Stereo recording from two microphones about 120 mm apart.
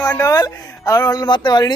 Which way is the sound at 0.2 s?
30° left (ahead or behind).